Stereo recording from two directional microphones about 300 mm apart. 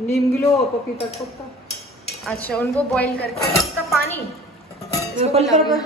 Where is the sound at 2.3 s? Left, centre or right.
Centre.